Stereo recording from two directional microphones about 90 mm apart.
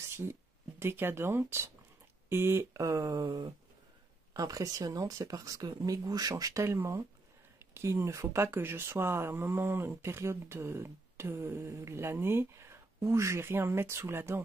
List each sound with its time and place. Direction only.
0.1 s speech: 30° right (ahead or behind)